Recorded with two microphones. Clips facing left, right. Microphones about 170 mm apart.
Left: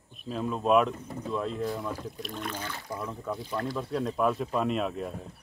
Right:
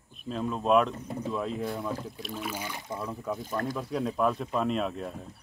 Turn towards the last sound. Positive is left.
turn(degrees=0)  # may be behind; listen again after turning